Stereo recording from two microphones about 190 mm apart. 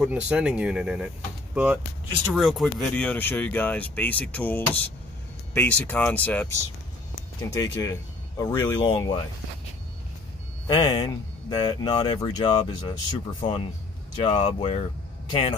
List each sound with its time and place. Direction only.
0.0 s speech: 5° right (ahead or behind); by 8.6 s 15° left (ahead or behind)
8.8 s speech: 25° left (ahead or behind)
10.7 s speech: 20° left (ahead or behind)